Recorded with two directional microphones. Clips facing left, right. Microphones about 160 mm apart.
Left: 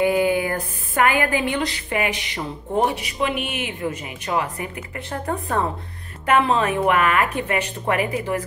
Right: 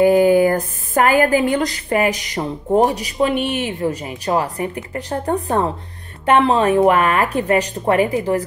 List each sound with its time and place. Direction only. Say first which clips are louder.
0.0 s speech: right 7 dB; 40° right (ahead or behind)